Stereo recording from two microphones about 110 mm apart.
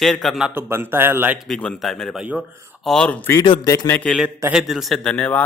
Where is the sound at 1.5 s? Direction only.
5° left (ahead or behind).